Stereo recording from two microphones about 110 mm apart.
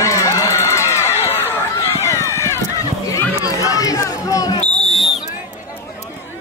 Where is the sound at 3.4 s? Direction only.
30° left (ahead or behind).